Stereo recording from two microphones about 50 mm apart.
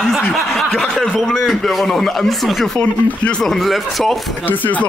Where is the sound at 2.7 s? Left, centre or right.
Left.